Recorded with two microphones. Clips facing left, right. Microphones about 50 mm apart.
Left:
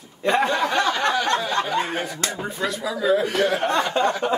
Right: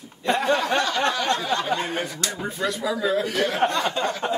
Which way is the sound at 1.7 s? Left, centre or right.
Centre.